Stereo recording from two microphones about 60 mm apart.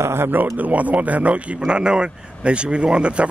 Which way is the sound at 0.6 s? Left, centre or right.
Right.